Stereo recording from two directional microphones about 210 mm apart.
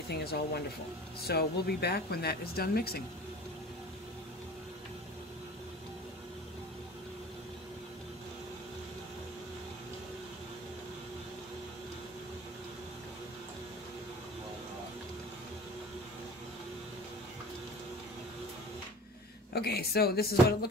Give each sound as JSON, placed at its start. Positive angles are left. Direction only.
{"t": 0.1, "sound": "speech", "side_deg": 50}
{"t": 19.5, "sound": "speech", "side_deg": 50}